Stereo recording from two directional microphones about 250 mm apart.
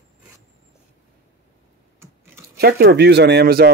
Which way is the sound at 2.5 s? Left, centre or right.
Right.